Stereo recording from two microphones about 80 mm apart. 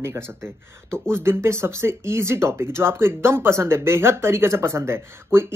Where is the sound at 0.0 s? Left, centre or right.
Right.